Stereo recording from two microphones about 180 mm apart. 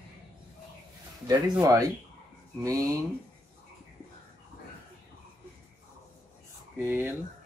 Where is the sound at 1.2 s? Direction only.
20° right (ahead or behind).